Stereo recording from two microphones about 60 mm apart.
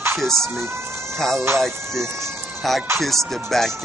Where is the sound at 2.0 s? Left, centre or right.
Right.